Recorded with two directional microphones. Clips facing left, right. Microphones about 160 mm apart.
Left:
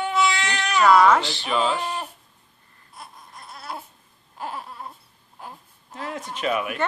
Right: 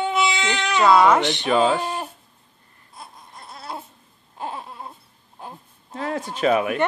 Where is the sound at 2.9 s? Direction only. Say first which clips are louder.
Right 1 dB; 25° right (ahead or behind).